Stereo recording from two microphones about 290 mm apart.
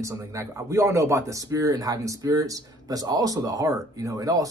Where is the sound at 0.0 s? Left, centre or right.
Centre.